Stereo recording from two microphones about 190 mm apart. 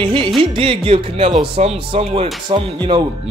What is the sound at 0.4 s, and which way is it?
Speech, 30° right (ahead or behind).